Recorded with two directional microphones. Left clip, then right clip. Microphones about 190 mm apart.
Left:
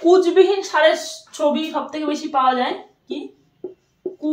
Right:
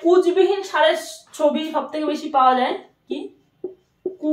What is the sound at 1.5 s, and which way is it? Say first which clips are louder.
A woman's voice: left 1 dB; 10° left (ahead or behind).